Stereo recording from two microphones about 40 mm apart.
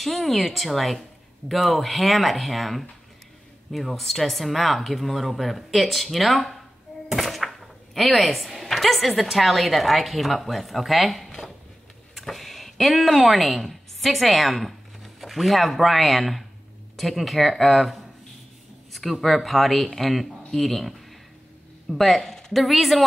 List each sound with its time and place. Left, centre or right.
0.0 s a woman's voice: centre
21.9 s a woman's voice: centre